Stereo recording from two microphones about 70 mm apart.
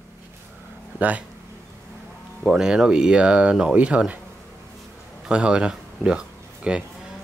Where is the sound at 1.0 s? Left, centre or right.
Right.